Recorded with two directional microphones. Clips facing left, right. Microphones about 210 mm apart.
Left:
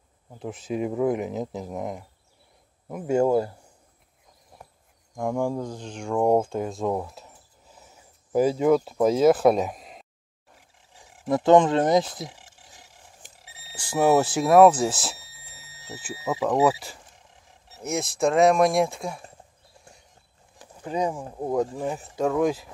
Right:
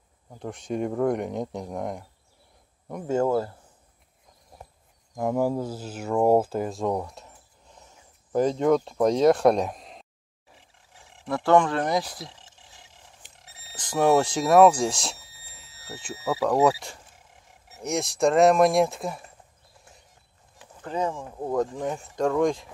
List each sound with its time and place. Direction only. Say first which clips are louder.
0.4 s speech: left 1 dB; 5° left (ahead or behind)
5.1 s speech: right 1 dB; 5° right (ahead or behind)
11.2 s speech: left 3 dB; 20° left (ahead or behind)
13.4 s a sound: even; centre (ahead or behind)
16.6 s speech: even; 5° left (ahead or behind)
19.8 s horse: left 2 dB; centre (ahead or behind)
20.8 s speech: left 2 dB; 15° left (ahead or behind)